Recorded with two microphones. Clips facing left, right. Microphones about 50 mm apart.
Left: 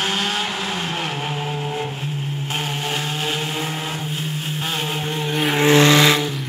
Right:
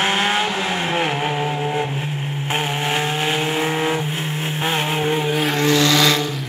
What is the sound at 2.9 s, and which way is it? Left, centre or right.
Vehicle, right.